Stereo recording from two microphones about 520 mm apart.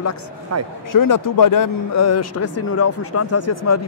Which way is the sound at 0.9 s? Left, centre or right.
Left.